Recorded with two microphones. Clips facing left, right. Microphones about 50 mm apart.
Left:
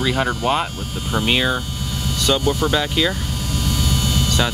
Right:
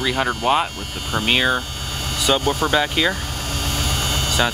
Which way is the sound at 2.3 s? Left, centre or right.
Right.